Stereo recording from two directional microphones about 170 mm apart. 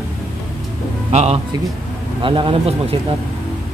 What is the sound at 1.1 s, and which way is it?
Speech, 40° right (ahead or behind).